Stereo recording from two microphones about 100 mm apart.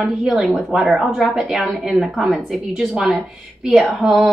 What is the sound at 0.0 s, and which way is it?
A woman's voice, centre (ahead or behind).